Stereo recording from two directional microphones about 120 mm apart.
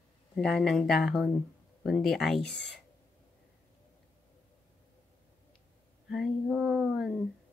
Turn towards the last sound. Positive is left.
turn(degrees=0)  # may be behind; listen again after turning